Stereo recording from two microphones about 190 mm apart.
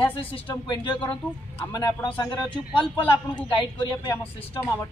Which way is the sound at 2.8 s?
10° left (ahead or behind).